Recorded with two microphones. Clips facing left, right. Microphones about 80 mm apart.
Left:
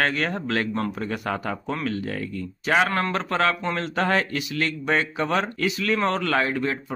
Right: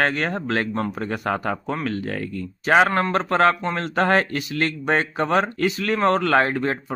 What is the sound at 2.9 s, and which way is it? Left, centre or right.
A man's voice, right.